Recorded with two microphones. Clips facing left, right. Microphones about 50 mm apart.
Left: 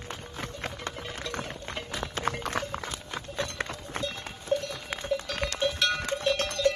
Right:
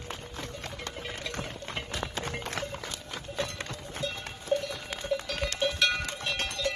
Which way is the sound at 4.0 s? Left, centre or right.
Centre.